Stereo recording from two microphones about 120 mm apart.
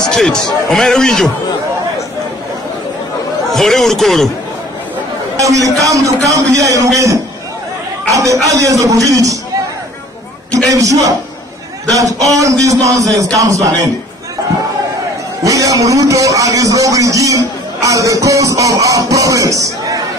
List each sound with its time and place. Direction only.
0.1 s a man's voice: 5° left (ahead or behind)
3.5 s a man's voice: centre (ahead or behind)
5.4 s a man's voice: 30° right (ahead or behind)
8.1 s a man's voice: 25° right (ahead or behind)
10.5 s a man's voice: 25° right (ahead or behind)
15.4 s a man's voice: 30° right (ahead or behind)